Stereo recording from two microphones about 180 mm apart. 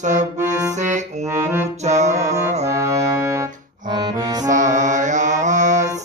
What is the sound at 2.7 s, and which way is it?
Music, 15° right (ahead or behind).